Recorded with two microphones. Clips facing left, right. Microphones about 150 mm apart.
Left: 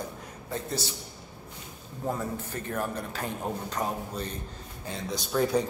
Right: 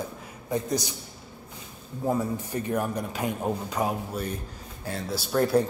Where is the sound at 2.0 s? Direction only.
10° right (ahead or behind).